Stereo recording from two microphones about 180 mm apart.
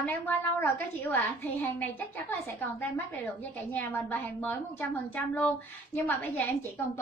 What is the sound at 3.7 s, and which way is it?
A woman's voice, 10° left (ahead or behind).